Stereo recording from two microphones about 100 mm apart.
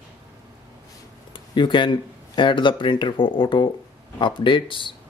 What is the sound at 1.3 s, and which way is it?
Speech, 55° left (ahead or behind).